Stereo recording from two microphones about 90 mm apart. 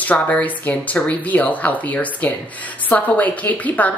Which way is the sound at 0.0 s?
15° left (ahead or behind).